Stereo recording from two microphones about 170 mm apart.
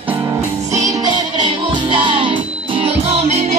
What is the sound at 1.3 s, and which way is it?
Music, 30° right (ahead or behind).